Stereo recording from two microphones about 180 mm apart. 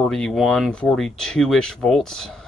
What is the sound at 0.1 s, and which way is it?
Speech, centre (ahead or behind).